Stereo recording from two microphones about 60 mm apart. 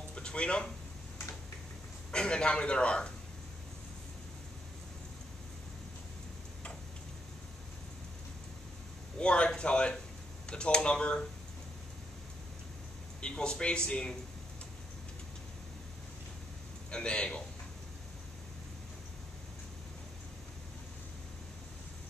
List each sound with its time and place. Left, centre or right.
0.1 s a sound: centre
2.0 s a man's voice: centre
9.2 s a man's voice: centre
13.2 s a man's voice: centre
16.9 s a man's voice: centre